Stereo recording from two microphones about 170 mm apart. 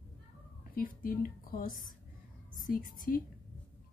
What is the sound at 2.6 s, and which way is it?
Speech, 55° left (ahead or behind).